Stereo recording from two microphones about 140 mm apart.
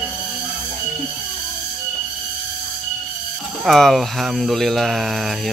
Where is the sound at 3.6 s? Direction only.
Centre (ahead or behind).